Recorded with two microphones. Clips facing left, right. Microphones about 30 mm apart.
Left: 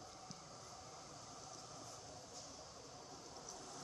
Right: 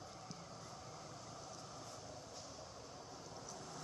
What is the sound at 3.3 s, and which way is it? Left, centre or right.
Vehicle, centre.